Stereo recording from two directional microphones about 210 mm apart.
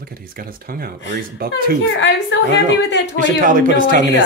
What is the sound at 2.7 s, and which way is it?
Speech, 55° left (ahead or behind).